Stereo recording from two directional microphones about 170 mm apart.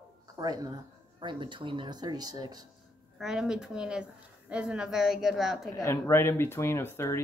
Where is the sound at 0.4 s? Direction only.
20° right (ahead or behind).